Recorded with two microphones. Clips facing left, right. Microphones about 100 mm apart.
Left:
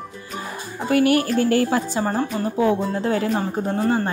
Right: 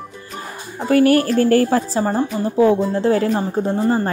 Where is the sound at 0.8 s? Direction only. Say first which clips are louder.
Right 4 dB; 40° right (ahead or behind).